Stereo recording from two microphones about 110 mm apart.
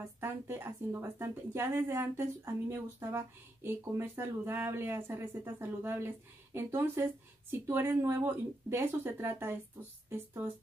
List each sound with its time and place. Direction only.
0.2 s speech: 20° right (ahead or behind)